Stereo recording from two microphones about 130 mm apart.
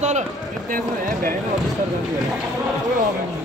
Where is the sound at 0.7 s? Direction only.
90° right.